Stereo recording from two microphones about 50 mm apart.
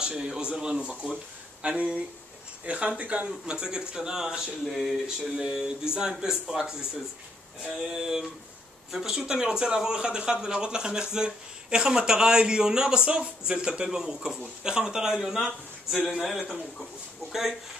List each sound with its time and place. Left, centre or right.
0.0 s a man's voice: centre
3.4 s a man's voice: centre